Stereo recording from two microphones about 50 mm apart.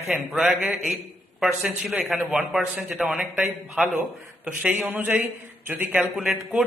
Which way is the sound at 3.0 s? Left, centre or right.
Right.